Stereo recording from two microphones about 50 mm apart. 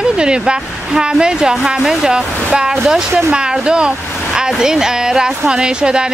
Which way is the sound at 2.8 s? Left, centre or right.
Centre.